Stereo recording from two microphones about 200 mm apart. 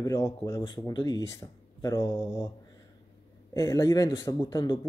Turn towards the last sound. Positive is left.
turn(degrees=20)  # may be behind; listen again after turning